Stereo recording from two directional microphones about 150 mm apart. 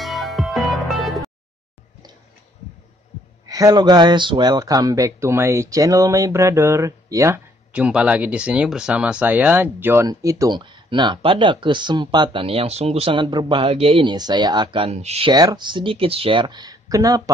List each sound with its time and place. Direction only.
0.0 s music: centre (ahead or behind)
3.4 s speech: 25° right (ahead or behind)
10.0 s speech: 25° right (ahead or behind); by 15.3 s 45° right (ahead or behind)
15.3 s speech: 30° right (ahead or behind)